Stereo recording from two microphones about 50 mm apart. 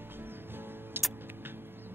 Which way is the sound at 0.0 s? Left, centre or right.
Right.